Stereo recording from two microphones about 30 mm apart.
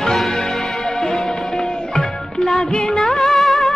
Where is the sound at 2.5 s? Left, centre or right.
Left.